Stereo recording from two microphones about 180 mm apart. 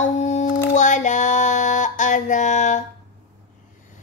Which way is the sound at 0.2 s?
40° left (ahead or behind).